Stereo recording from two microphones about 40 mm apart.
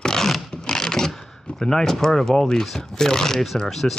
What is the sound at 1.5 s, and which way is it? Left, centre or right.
Speech, centre.